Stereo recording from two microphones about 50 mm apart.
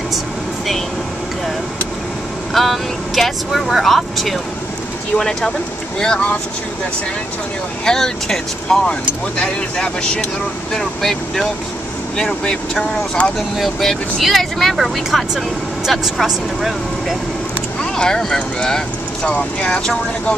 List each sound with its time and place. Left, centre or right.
2.5 s speech: centre
5.9 s speech: centre
7.8 s speech: centre
10.7 s speech: centre
13.6 s speech: centre
17.9 s speech: centre